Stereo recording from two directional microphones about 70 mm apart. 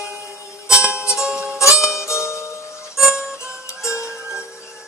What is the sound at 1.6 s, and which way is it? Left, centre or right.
Music, left.